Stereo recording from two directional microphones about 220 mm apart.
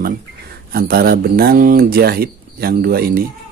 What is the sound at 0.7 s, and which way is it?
Speech, 45° right (ahead or behind).